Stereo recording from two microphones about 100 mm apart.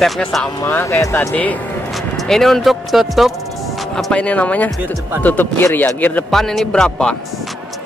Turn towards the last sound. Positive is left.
turn(degrees=5)  # may be behind; listen again after turning